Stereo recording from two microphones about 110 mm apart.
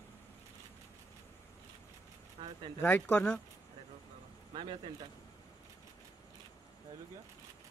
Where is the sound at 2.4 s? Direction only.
70° right (ahead or behind).